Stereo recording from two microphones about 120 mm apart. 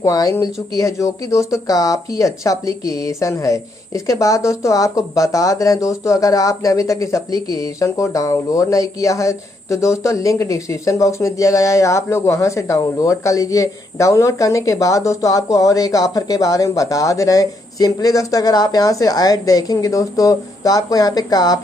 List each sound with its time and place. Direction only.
0.0 s speech: 30° left (ahead or behind)